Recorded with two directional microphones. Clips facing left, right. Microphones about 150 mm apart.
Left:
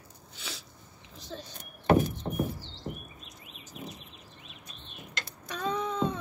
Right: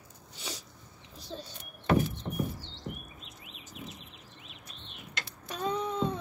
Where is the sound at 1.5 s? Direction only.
45° left (ahead or behind).